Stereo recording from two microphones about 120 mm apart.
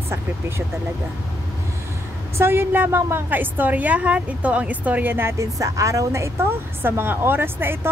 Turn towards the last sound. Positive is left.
turn(degrees=-20)  # may be behind; listen again after turning